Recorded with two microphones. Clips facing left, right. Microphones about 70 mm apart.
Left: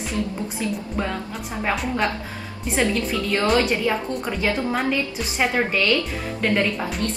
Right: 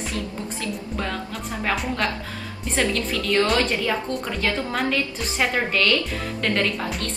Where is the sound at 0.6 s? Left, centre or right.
Centre.